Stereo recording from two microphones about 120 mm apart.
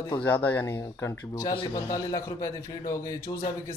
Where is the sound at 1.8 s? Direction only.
30° left (ahead or behind).